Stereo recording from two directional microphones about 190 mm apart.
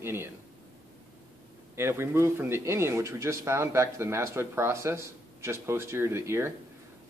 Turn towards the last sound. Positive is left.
turn(degrees=-15)  # may be behind; listen again after turning